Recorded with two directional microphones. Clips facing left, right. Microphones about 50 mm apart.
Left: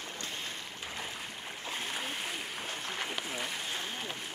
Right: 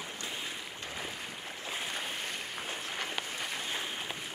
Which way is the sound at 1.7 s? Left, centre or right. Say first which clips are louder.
Even; centre.